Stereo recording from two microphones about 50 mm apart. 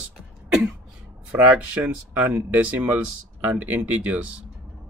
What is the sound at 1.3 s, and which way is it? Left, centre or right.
Speech, right.